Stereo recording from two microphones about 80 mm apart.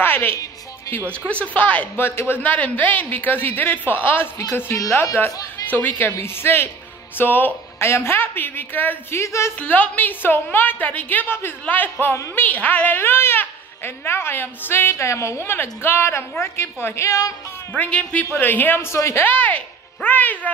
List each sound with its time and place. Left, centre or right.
0.0 s music: left
1.3 s speech: centre
9.2 s a woman's voice: left
9.6 s speech: left
17.7 s speech: centre; by 19.2 s left
19.2 s speech: centre